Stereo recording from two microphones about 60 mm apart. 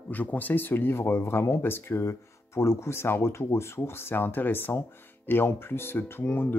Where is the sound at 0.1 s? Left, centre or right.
Left.